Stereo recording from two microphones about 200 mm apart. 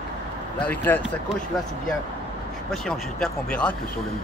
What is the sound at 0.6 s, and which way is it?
Speech, 10° left (ahead or behind).